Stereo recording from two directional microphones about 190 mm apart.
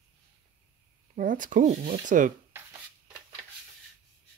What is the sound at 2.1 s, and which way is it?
Speech, 45° right (ahead or behind).